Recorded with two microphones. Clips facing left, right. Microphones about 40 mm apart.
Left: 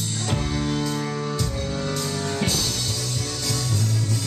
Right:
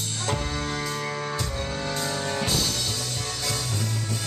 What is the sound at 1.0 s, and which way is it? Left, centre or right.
Music, centre.